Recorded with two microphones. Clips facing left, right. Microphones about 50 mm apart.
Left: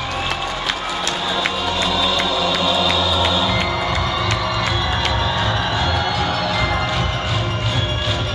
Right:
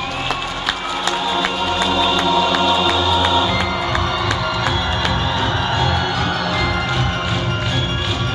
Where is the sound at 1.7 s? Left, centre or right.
Right.